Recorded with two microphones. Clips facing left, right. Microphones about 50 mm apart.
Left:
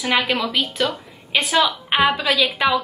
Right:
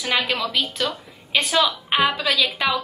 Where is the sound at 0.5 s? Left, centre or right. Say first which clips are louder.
Left 2 dB; centre.